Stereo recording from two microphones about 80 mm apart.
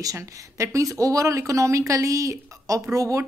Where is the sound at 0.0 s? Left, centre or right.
Right.